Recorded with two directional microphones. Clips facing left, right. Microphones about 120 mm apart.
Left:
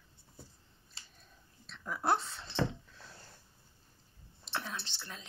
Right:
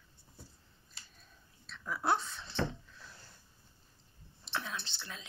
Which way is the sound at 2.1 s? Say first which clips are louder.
Even; 30° left (ahead or behind).